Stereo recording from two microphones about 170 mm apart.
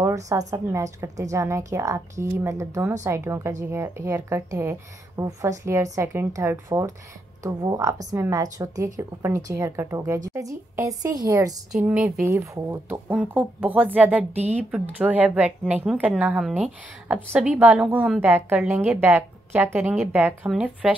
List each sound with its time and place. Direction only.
0.0 s a woman's voice: 20° right (ahead or behind)
11.7 s a woman's voice: 5° right (ahead or behind)